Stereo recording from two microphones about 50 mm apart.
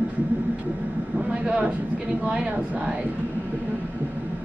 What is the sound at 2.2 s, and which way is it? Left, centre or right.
Speech, right.